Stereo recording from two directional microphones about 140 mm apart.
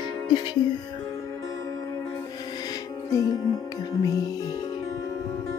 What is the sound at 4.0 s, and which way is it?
Speech, 25° left (ahead or behind).